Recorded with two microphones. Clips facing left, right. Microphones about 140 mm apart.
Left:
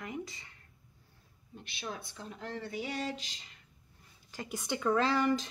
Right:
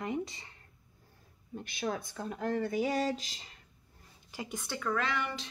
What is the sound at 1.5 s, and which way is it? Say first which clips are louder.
Speech: right 7 dB; 45° right (ahead or behind).